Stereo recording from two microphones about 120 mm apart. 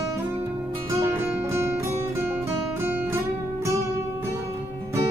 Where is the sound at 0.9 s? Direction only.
25° right (ahead or behind).